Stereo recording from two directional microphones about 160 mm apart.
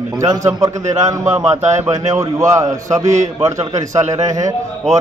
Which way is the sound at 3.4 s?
20° right (ahead or behind).